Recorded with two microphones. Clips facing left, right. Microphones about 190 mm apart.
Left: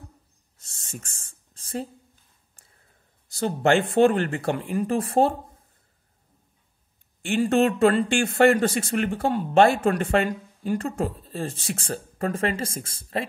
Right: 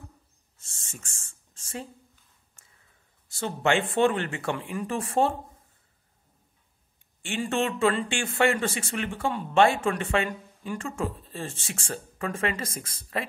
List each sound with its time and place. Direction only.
0.8 s a sound: 35° left (ahead or behind)
3.3 s speech: 40° left (ahead or behind)
7.2 s speech: 40° left (ahead or behind)